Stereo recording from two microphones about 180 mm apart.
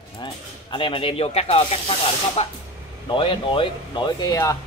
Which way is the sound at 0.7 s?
30° left (ahead or behind).